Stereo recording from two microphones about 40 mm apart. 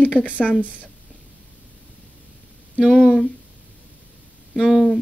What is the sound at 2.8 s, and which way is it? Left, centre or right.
Speech, right.